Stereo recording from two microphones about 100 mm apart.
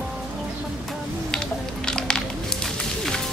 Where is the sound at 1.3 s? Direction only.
5° left (ahead or behind).